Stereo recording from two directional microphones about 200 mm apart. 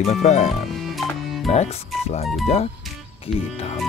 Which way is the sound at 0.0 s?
35° left (ahead or behind).